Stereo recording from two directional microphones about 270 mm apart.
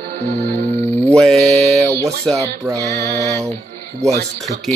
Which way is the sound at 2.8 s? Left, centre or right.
Centre.